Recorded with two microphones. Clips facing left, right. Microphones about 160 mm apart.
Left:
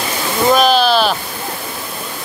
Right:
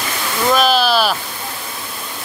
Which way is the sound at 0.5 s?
Centre (ahead or behind).